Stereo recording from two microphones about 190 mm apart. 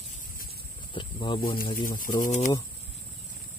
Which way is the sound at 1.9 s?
45° left (ahead or behind).